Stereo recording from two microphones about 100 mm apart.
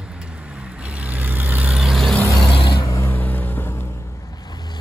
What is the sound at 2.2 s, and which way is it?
Vehicle, 35° left (ahead or behind).